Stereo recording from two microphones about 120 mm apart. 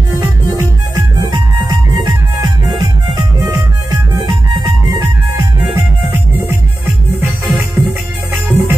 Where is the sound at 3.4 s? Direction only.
25° right (ahead or behind).